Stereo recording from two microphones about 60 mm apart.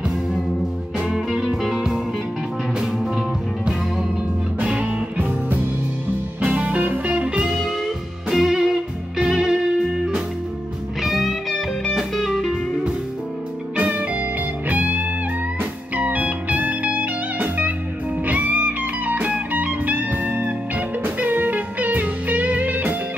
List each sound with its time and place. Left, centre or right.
0.9 s music: centre
4.6 s music: right
7.6 s music: centre
13.7 s music: right